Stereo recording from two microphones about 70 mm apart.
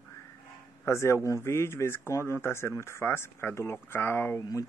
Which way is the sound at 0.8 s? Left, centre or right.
Left.